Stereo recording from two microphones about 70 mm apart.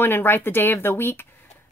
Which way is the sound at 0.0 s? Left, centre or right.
Left.